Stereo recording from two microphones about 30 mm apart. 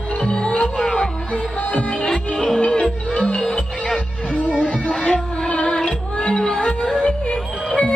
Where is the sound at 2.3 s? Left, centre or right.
Left.